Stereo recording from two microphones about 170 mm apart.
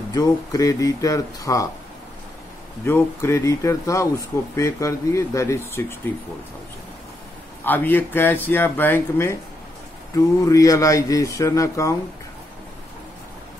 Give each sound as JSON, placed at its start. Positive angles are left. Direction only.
{"t": 0.1, "sound": "speech", "side_deg": 20}
{"t": 2.8, "sound": "speech", "side_deg": 15}
{"t": 7.6, "sound": "speech", "side_deg": 10}